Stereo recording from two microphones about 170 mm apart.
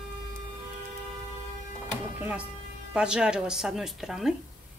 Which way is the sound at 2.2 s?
5° right (ahead or behind).